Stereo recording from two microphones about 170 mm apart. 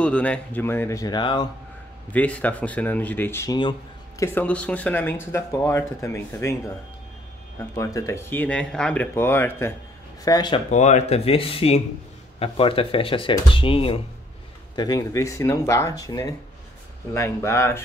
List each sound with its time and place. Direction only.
0.0 s speech: 5° left (ahead or behind); by 1.5 s 25° left (ahead or behind)
2.1 s speech: 10° left (ahead or behind)
7.5 s speech: 20° left (ahead or behind)
10.2 s speech: 25° left (ahead or behind)
10.7 s speech: 45° left (ahead or behind)
14.8 s speech: 20° left (ahead or behind)